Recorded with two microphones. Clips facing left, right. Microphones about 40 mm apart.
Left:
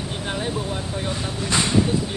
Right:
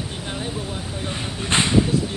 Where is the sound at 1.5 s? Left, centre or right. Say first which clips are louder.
Right 2 dB; right.